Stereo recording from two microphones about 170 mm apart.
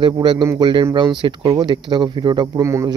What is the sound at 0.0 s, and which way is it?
Speech, 25° right (ahead or behind).